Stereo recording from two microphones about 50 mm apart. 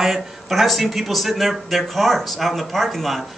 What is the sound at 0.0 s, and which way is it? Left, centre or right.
Speech, centre.